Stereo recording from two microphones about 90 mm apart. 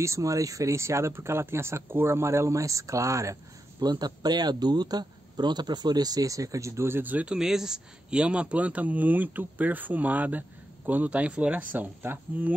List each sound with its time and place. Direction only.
0.0 s speech: 35° right (ahead or behind)
3.8 s speech: 50° right (ahead or behind); by 7.3 s 15° right (ahead or behind)
7.3 s speech: 5° right (ahead or behind); by 12.5 s 20° right (ahead or behind)